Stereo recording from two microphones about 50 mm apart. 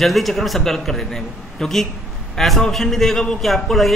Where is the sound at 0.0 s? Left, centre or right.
Centre.